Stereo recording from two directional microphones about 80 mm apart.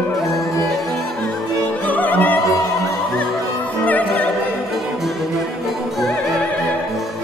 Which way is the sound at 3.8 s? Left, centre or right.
Left.